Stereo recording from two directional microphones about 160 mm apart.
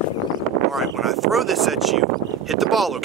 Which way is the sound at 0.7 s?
Centre (ahead or behind).